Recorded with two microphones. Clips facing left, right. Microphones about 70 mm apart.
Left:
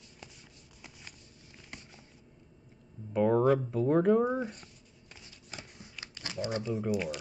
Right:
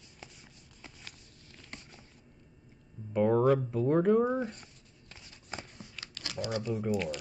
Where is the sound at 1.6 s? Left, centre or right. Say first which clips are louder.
Right 1 dB; centre.